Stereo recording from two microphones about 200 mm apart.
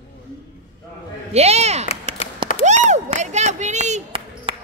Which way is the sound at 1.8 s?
30° left (ahead or behind).